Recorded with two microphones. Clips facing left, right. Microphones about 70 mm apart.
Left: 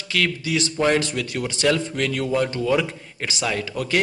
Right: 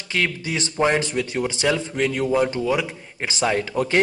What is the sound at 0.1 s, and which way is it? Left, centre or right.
A man's voice, right.